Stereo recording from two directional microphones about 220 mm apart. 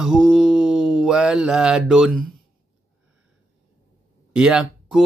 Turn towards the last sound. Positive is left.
turn(degrees=-5)  # may be behind; listen again after turning